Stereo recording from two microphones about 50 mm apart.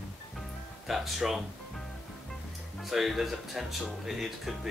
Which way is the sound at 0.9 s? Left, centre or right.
Centre.